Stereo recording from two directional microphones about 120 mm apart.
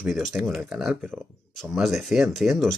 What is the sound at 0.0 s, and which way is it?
Speech, centre (ahead or behind).